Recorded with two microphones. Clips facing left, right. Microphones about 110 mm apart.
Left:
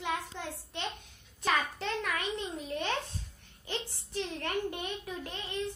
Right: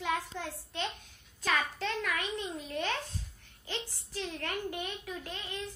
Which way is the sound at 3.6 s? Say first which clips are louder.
Left 2 dB; 25° left (ahead or behind).